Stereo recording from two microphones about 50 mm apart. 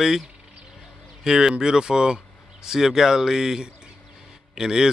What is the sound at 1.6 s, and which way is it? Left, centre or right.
A man's voice, centre.